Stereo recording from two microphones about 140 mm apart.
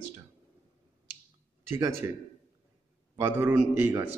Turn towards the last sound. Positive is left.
turn(degrees=-10)  # may be behind; listen again after turning